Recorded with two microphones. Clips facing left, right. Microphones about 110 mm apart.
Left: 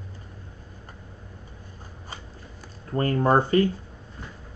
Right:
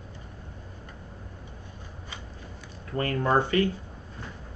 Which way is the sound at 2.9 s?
35° left (ahead or behind).